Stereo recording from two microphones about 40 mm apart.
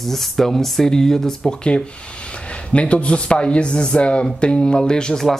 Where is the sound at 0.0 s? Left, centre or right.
Centre.